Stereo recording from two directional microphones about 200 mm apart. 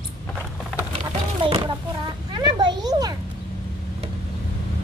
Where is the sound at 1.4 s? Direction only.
25° right (ahead or behind).